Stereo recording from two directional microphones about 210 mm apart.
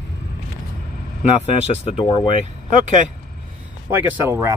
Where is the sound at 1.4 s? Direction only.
25° left (ahead or behind).